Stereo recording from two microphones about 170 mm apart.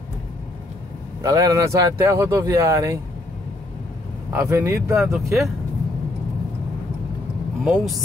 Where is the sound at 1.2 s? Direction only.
20° right (ahead or behind).